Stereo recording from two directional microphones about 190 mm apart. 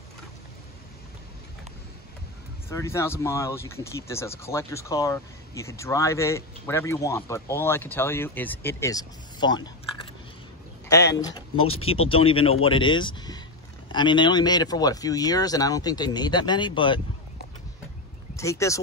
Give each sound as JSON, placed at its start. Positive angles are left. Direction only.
{"t": 2.7, "sound": "speech", "side_deg": 15}
{"t": 11.1, "sound": "speech", "side_deg": 20}
{"t": 11.5, "sound": "speech", "side_deg": 90}
{"t": 12.1, "sound": "speech", "side_deg": 30}
{"t": 18.3, "sound": "speech", "side_deg": 15}